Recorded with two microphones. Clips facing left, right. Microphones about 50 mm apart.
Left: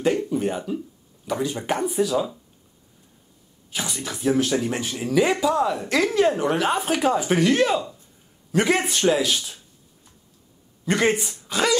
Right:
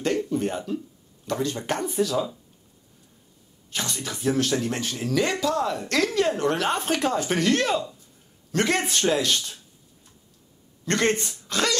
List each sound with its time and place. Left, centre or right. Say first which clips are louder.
0.0 s speech: left 3 dB; centre
3.7 s speech: left 1 dB; centre
10.9 s speech: left 2 dB; centre